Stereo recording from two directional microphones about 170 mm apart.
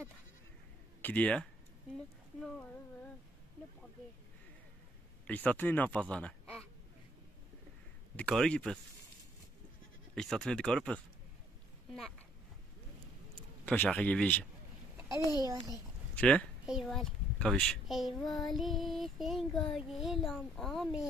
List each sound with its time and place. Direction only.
1.0 s speech: 10° left (ahead or behind)
2.4 s a sound: 5° left (ahead or behind)
5.2 s speech: 10° left (ahead or behind)
8.2 s a child's voice: 5° left (ahead or behind)
10.1 s a child's voice: 5° left (ahead or behind)
13.7 s speech: 5° left (ahead or behind)
15.0 s a sound: 20° right (ahead or behind)
15.4 s a child's voice: 20° right (ahead or behind)
16.2 s a woman's voice: 5° left (ahead or behind)